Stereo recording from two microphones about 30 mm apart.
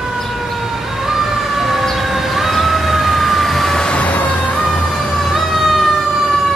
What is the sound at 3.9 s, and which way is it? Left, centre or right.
Music, left.